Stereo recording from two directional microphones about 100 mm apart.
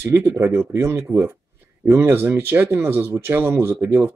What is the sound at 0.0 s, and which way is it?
Speech, 25° right (ahead or behind).